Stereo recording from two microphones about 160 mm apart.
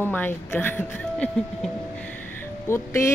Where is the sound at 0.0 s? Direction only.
10° left (ahead or behind).